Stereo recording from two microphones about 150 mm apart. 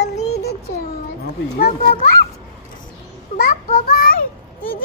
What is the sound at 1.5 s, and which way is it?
Speech, 90° left.